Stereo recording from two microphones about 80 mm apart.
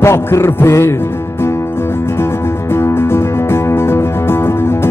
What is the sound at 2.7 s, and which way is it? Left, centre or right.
Music, left.